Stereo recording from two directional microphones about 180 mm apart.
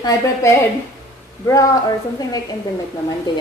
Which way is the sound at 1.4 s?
20° left (ahead or behind).